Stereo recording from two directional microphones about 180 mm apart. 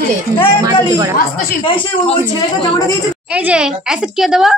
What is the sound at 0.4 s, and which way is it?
Speech, 30° left (ahead or behind).